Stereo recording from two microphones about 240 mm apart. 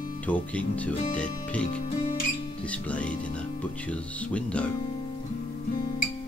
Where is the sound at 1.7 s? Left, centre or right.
Left.